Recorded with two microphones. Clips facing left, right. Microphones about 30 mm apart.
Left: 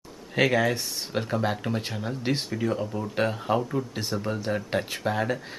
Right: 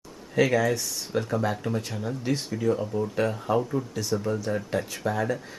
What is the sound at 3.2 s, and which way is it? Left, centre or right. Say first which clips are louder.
Speech: left 1 dB; left.